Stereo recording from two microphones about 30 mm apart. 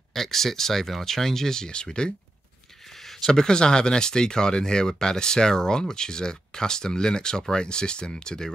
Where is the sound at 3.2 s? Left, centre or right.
Left.